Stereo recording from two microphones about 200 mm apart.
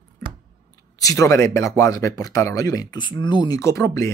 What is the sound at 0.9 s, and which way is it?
Speech, 15° left (ahead or behind).